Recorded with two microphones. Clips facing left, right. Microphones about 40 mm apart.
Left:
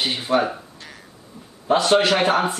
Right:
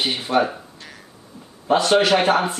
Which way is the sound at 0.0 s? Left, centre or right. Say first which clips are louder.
Right 1 dB; centre.